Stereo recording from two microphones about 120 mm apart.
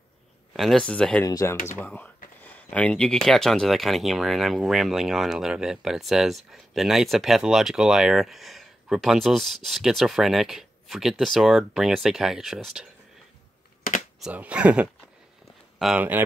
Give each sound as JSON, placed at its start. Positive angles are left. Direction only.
{"t": 0.5, "sound": "speech", "side_deg": 0}
{"t": 1.2, "sound": "speech", "side_deg": 25}
{"t": 1.7, "sound": "speech", "side_deg": 15}
{"t": 14.2, "sound": "speech", "side_deg": -10}
{"t": 16.0, "sound": "speech", "side_deg": -15}